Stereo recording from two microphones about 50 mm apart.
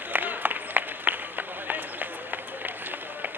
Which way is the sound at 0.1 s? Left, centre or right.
Right.